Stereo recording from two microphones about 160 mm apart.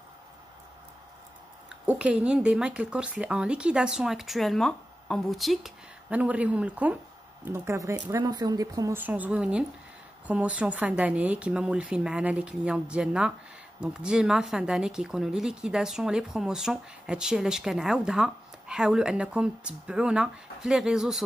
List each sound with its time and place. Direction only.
1.7 s speech: 5° right (ahead or behind)